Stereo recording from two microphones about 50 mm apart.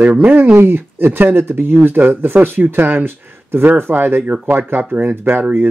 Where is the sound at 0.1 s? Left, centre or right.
Right.